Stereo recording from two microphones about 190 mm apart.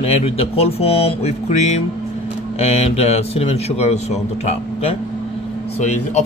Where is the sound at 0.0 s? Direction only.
30° left (ahead or behind).